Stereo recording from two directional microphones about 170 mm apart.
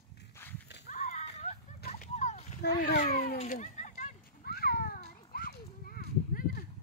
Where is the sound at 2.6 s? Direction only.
60° left (ahead or behind).